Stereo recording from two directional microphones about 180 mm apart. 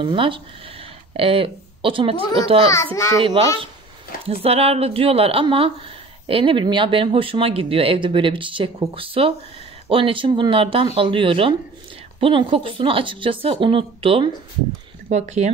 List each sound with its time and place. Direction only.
0.0 s a woman's voice: 30° right (ahead or behind)
2.7 s a child's voice: 15° left (ahead or behind)
4.4 s a woman's voice: 35° right (ahead or behind)